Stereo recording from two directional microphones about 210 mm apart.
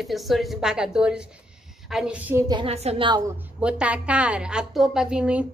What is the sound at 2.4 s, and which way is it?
Speech, 25° right (ahead or behind).